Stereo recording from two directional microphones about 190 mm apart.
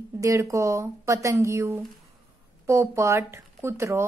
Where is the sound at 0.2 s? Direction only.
15° right (ahead or behind).